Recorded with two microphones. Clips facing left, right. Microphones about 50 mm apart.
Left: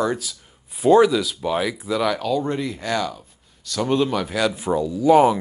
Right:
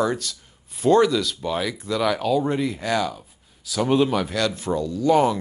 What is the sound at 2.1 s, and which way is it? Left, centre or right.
Speech, centre.